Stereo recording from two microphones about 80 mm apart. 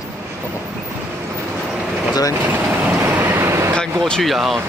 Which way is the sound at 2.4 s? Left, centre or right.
Right.